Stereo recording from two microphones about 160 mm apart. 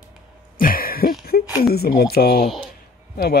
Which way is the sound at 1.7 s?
75° left (ahead or behind).